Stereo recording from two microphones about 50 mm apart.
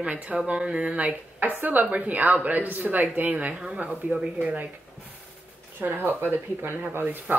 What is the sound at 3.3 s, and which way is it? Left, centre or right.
A woman's voice, right.